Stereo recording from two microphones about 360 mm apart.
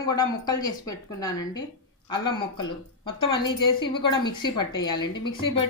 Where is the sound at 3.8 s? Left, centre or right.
Centre.